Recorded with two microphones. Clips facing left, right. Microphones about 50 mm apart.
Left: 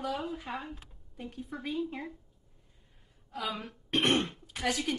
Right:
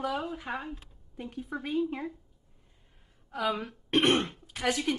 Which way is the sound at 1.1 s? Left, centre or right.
Right.